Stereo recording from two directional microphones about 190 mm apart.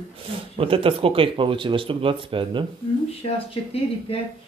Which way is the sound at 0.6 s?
30° right (ahead or behind).